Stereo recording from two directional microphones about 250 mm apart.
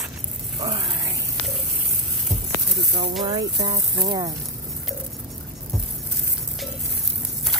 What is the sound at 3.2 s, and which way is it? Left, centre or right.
Speech, centre.